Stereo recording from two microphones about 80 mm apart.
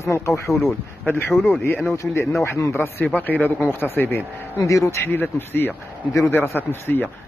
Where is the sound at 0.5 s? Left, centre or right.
Centre.